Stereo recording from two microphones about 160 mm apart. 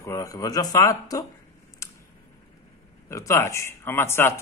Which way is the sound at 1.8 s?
20° left (ahead or behind).